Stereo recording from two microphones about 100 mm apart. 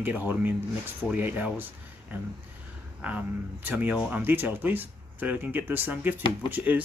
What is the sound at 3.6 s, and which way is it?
Speech, 15° right (ahead or behind).